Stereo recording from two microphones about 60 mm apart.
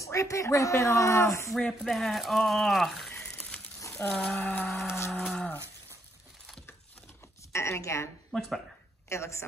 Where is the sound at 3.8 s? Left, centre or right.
Left.